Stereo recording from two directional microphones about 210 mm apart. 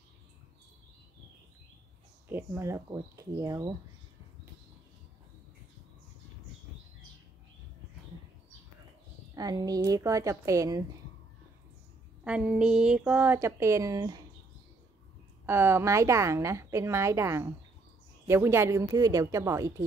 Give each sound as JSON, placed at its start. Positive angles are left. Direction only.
{"t": 2.2, "sound": "a woman's voice", "side_deg": -10}
{"t": 9.3, "sound": "a woman's voice", "side_deg": -20}
{"t": 12.3, "sound": "a woman's voice", "side_deg": -5}
{"t": 15.4, "sound": "a woman's voice", "side_deg": -10}